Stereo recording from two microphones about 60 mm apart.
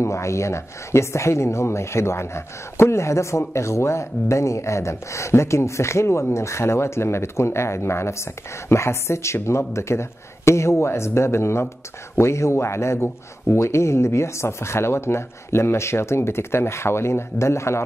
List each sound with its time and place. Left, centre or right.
0.0 s speech: left